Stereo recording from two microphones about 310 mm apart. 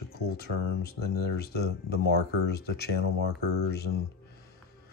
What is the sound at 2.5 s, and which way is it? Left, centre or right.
Speech, left.